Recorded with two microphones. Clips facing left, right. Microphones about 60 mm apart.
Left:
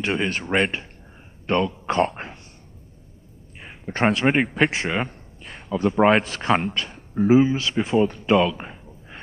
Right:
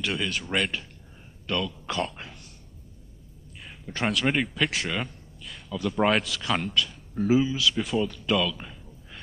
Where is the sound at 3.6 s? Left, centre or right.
Left.